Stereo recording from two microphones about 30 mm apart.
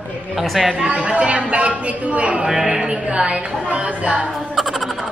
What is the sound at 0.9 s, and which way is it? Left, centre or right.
A woman's voice, right.